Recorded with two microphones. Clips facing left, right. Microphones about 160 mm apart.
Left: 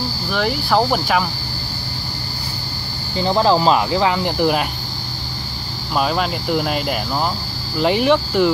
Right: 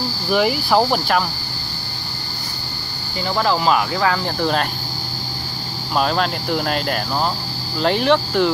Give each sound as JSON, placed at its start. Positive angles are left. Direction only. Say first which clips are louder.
{"t": 0.3, "sound": "speech", "louder": "right 2 dB", "side_deg": -5}
{"t": 3.2, "sound": "speech", "louder": "left 4 dB", "side_deg": 25}
{"t": 5.9, "sound": "speech", "louder": "even", "side_deg": 5}